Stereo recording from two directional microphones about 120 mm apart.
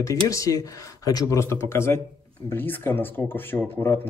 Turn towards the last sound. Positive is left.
turn(degrees=15)  # may be behind; listen again after turning